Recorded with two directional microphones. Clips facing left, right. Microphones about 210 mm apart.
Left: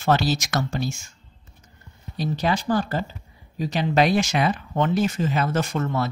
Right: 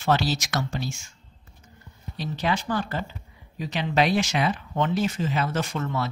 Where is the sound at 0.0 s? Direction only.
45° left (ahead or behind).